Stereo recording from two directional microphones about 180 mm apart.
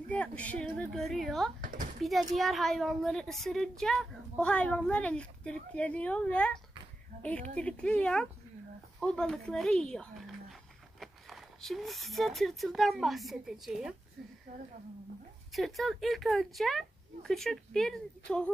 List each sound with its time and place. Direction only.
0.1 s a woman's voice: 10° left (ahead or behind)
1.6 s speech: 50° right (ahead or behind)
2.3 s a woman's voice: centre (ahead or behind)
15.5 s a woman's voice: centre (ahead or behind)